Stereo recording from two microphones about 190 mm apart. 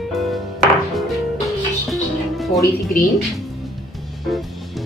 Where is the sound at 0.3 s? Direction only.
Centre (ahead or behind).